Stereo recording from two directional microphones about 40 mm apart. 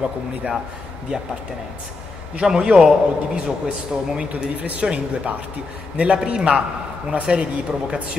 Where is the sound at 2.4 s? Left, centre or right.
Right.